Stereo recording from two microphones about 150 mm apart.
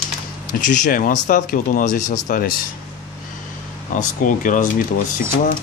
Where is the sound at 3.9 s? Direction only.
60° left (ahead or behind).